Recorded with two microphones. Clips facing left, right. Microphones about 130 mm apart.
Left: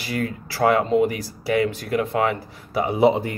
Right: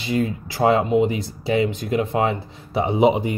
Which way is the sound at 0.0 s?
20° right (ahead or behind).